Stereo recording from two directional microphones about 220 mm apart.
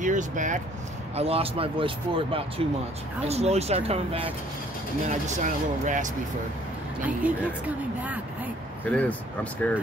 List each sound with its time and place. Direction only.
0.0 s speech: 35° right (ahead or behind)
7.2 s speech: 5° right (ahead or behind)
8.8 s speech: 5° left (ahead or behind)